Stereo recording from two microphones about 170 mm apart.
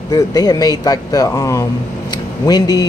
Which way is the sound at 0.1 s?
20° left (ahead or behind).